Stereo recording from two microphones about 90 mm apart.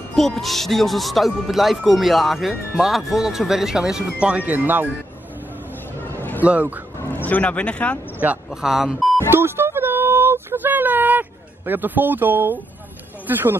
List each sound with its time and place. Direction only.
0.1 s speech: 5° left (ahead or behind); by 4.8 s 20° right (ahead or behind)
6.0 s music: 20° left (ahead or behind)
6.4 s speech: 15° right (ahead or behind)
7.1 s speech: 20° left (ahead or behind)
8.2 s speech: 15° right (ahead or behind)
8.5 s speech: 5° right (ahead or behind)
9.3 s child singing: 25° right (ahead or behind)
13.3 s speech: 25° right (ahead or behind)